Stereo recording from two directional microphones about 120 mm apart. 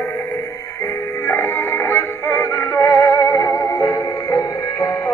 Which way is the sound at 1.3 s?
15° left (ahead or behind).